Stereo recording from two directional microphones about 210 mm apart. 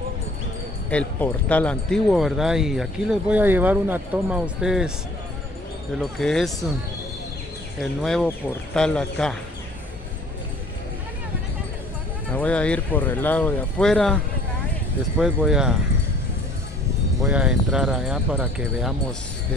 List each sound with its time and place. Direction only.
0.8 s speech: 5° left (ahead or behind)
5.9 s speech: centre (ahead or behind)
7.8 s speech: centre (ahead or behind)
12.3 s speech: 5° left (ahead or behind)
15.2 s speech: 5° right (ahead or behind)
17.2 s speech: 5° right (ahead or behind)